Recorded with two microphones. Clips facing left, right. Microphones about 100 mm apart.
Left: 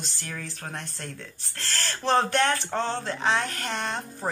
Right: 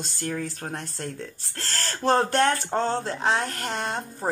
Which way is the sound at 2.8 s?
40° right (ahead or behind).